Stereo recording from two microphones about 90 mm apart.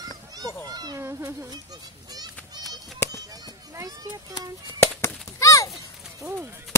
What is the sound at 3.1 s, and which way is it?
Chop, 45° right (ahead or behind).